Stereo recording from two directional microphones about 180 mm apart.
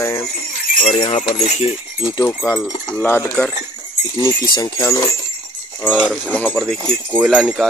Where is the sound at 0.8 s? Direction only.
35° left (ahead or behind).